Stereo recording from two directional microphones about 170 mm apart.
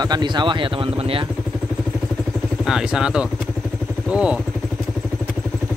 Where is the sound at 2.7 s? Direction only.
5° right (ahead or behind).